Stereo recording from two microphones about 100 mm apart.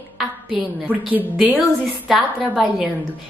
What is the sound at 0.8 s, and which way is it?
Speech, 15° right (ahead or behind).